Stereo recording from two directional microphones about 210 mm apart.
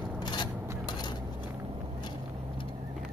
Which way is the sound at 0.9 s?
20° left (ahead or behind).